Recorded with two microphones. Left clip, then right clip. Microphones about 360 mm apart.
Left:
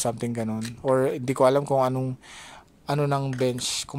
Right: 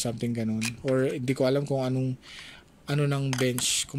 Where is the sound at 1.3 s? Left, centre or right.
Centre.